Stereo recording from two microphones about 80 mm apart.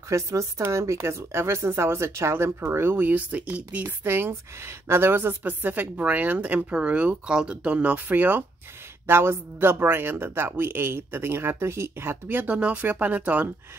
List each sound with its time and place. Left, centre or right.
0.1 s a woman's voice: right; by 13.5 s centre